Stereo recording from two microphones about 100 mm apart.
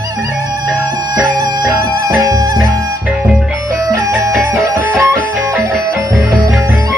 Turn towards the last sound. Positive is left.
turn(degrees=-30)  # may be behind; listen again after turning